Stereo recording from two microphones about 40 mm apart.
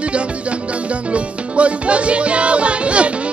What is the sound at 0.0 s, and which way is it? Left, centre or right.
Music, right.